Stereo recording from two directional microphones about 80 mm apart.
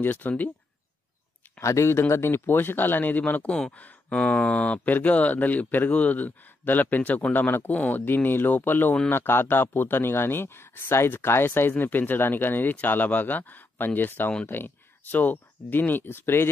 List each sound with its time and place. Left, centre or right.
0.0 s speech: left
1.6 s speech: left